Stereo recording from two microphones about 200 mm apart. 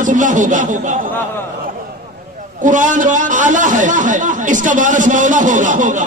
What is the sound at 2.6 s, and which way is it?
A man's voice, 40° right (ahead or behind).